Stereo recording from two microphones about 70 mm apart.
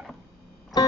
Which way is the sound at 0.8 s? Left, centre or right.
Left.